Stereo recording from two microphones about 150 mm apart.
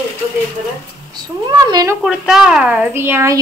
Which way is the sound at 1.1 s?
25° right (ahead or behind).